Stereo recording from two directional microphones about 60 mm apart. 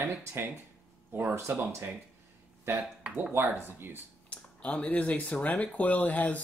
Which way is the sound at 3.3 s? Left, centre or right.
Right.